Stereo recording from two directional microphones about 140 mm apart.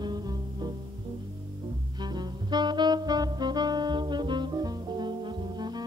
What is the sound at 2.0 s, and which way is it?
Saxophone, 30° right (ahead or behind).